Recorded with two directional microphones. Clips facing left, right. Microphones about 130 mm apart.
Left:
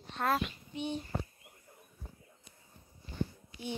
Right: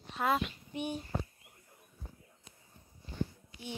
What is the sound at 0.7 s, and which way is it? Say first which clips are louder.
Speech: even; 10° right (ahead or behind).